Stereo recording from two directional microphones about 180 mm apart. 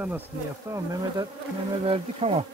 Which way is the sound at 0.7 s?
20° right (ahead or behind).